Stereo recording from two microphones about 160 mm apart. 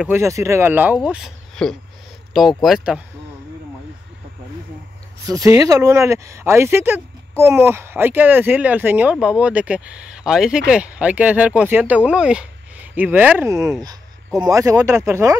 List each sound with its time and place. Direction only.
0.0 s speech: 15° right (ahead or behind)
5.3 s speech: 20° right (ahead or behind)